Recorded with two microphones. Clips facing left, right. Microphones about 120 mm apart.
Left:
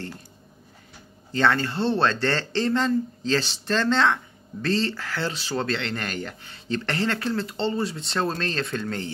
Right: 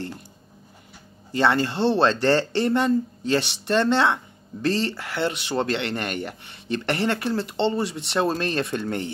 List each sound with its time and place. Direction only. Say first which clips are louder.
1.4 s speech: right 2 dB; 20° right (ahead or behind)